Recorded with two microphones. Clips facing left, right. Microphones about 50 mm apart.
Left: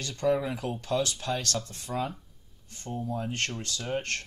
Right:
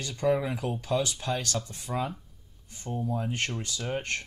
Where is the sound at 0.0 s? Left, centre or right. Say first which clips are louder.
Even; centre.